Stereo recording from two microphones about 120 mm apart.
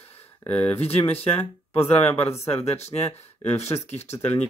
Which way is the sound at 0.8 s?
55° left (ahead or behind).